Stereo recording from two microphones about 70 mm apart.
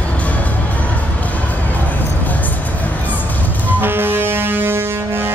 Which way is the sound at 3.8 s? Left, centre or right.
Right.